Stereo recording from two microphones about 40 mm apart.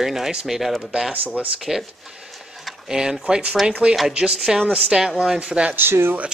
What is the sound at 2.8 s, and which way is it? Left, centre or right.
A man's voice, centre.